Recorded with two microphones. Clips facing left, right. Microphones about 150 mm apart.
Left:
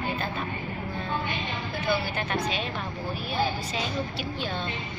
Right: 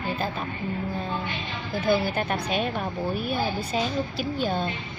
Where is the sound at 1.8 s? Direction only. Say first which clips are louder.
Right 5 dB; 45° right (ahead or behind).